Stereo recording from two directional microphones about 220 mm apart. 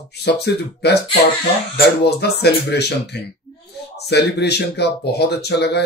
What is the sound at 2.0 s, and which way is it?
Speech, 50° left (ahead or behind).